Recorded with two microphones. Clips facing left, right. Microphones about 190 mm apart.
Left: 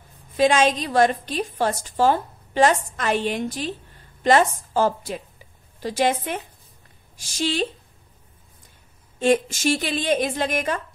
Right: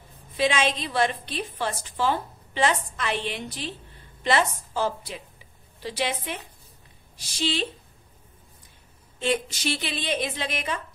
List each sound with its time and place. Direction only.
0.4 s a woman's voice: 45° left (ahead or behind)
9.2 s a woman's voice: 45° left (ahead or behind)